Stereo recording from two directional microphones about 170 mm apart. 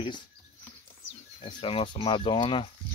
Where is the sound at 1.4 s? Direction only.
30° left (ahead or behind).